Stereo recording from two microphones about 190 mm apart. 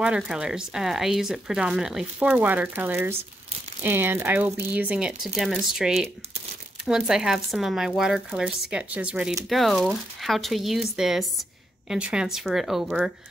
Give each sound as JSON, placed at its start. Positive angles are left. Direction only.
{"t": 0.0, "sound": "speech", "side_deg": -5}